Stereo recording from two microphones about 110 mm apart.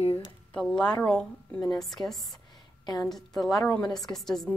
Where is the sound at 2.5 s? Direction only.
40° left (ahead or behind).